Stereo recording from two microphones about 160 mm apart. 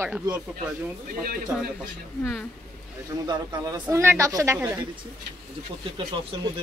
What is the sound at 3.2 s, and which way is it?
A woman's voice, 25° right (ahead or behind).